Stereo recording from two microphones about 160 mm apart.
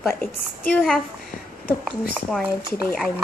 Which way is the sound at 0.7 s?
Centre (ahead or behind).